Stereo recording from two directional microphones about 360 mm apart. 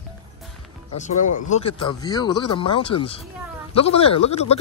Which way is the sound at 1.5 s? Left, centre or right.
Centre.